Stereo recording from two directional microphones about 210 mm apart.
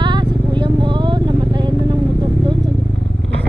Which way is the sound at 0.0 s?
20° right (ahead or behind).